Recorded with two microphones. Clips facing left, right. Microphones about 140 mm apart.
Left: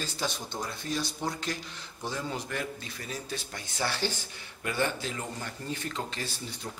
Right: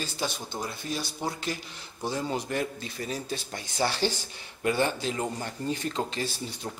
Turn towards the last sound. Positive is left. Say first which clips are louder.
# right 5 dB
turn(degrees=-25)  # may be behind; listen again after turning